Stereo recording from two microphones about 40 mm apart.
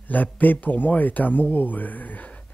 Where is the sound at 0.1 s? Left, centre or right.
Left.